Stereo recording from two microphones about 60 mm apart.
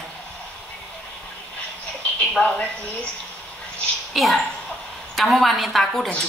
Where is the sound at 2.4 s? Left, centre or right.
Centre.